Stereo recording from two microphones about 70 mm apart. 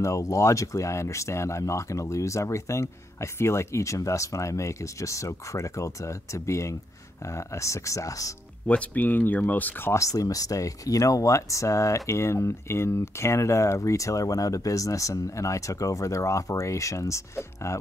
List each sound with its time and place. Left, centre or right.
0.0 s speech: left
8.6 s speech: left
9.9 s speech: left